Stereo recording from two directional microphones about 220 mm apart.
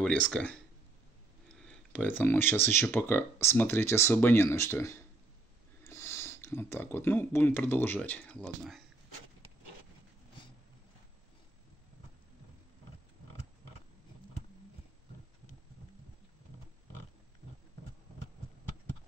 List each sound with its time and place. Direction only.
0.0 s speech: 5° left (ahead or behind)